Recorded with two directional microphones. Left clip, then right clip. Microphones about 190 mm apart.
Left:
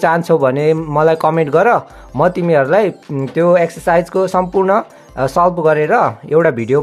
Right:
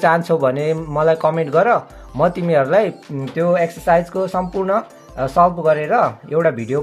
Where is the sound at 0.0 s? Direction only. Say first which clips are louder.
Left 3 dB; 30° left (ahead or behind).